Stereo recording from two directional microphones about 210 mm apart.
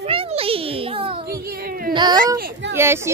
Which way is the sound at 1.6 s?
45° right (ahead or behind).